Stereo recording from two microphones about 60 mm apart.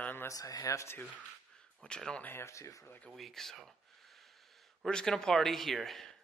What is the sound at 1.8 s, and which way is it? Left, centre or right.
Speech, centre.